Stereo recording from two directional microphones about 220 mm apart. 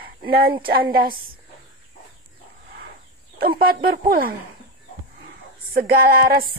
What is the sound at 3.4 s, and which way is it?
Speech, 45° right (ahead or behind).